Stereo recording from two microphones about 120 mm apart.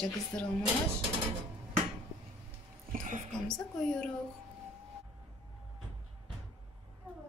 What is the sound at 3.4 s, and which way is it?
Speech, 5° left (ahead or behind).